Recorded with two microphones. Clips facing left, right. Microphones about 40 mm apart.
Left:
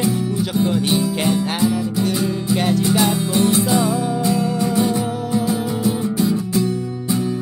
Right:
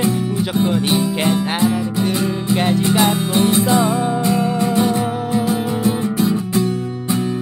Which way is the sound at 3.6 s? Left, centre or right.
Right.